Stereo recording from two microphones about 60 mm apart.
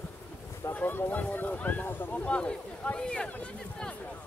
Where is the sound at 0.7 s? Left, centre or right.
Left.